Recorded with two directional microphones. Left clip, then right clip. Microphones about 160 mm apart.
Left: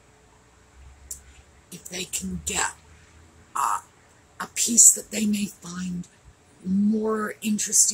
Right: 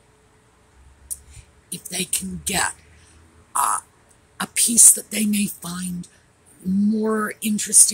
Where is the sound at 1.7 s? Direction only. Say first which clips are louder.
Right 5 dB; 50° right (ahead or behind).